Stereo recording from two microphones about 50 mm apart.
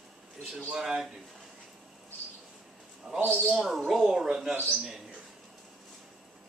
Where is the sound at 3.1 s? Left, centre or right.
Centre.